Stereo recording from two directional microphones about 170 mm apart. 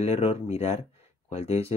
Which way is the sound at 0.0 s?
35° left (ahead or behind).